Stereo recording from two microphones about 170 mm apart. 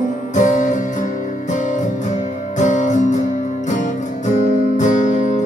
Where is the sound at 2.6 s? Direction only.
45° left (ahead or behind).